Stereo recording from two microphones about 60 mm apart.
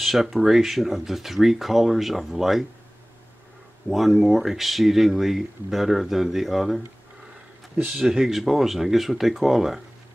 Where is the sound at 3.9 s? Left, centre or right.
Centre.